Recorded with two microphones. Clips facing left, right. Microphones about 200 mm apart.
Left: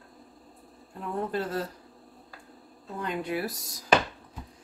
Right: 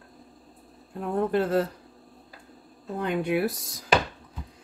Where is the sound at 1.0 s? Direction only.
55° right (ahead or behind).